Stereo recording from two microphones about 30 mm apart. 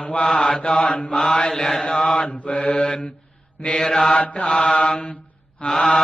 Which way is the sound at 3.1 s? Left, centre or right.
Centre.